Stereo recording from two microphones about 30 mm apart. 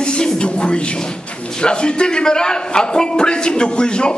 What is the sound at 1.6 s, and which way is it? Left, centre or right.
A man's voice, left.